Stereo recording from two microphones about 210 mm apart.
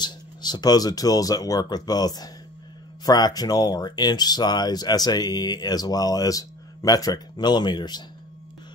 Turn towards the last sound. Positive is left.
turn(degrees=20)  # may be behind; listen again after turning